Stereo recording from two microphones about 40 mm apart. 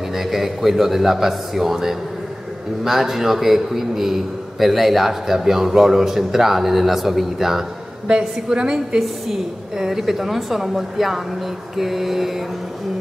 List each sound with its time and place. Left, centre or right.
0.1 s a man's voice: centre
8.1 s a man's voice: right; by 12.4 s centre